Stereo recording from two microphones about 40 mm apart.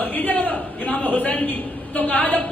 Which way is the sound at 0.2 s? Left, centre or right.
Left.